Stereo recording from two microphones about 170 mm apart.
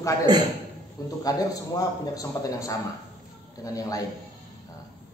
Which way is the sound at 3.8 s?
20° left (ahead or behind).